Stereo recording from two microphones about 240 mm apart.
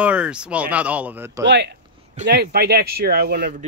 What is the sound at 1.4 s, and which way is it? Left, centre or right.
Speech, right.